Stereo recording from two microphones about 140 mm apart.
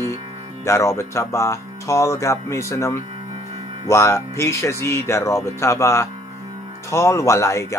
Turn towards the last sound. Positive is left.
turn(degrees=20)  # may be behind; listen again after turning